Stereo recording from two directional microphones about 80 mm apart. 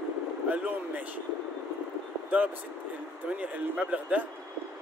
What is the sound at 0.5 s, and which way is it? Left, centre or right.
Speech, centre.